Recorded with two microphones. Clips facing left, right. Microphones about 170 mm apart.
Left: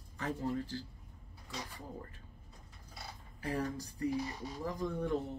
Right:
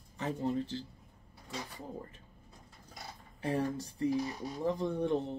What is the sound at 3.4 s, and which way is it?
Speech, 25° right (ahead or behind).